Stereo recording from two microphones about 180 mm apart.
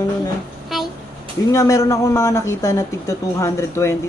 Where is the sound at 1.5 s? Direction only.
15° left (ahead or behind).